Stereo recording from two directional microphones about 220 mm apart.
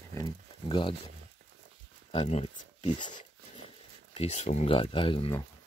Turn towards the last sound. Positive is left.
turn(degrees=25)  # may be behind; listen again after turning